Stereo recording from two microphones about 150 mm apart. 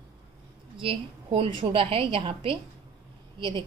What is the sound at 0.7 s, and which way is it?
A woman's voice, 35° right (ahead or behind).